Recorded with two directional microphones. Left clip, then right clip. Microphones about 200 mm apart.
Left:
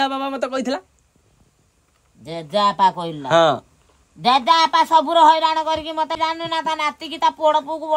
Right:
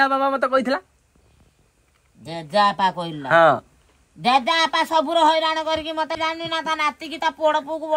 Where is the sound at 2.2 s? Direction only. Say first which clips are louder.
Even; 5° left (ahead or behind).